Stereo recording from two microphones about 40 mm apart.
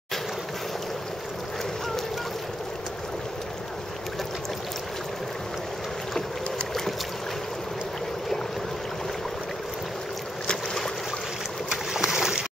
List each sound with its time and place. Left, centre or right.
10.4 s boat: left
11.7 s boat: centre